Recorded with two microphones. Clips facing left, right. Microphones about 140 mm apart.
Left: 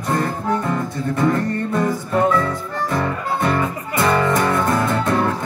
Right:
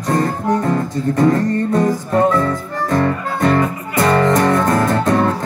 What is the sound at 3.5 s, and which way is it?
Music, 40° right (ahead or behind).